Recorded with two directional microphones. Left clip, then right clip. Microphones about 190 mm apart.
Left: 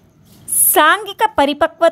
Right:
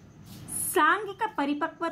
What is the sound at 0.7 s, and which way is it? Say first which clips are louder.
A woman's voice: left 11 dB; 45° left (ahead or behind).